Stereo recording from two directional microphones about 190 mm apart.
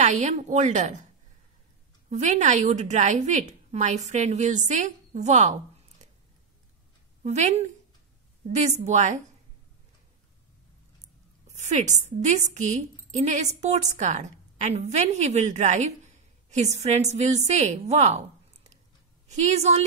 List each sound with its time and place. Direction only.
0.0 s a woman's voice: 40° right (ahead or behind)
2.0 s a woman's voice: 35° right (ahead or behind)
7.2 s a woman's voice: 35° right (ahead or behind)
11.4 s a woman's voice: 35° right (ahead or behind)
19.2 s a woman's voice: 35° right (ahead or behind)